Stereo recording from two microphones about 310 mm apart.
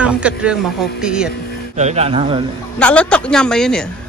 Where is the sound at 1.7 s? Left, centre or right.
Right.